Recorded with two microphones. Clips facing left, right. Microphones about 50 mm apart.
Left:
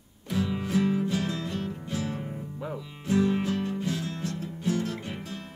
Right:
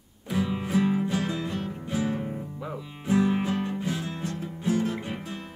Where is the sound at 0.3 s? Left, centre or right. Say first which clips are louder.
Right 1 dB; centre.